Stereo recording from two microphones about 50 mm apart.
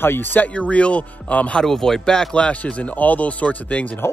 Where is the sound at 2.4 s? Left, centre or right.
Left.